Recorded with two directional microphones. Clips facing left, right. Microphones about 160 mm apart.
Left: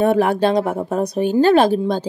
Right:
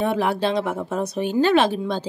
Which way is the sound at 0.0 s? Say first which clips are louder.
Left 6 dB; 45° left (ahead or behind).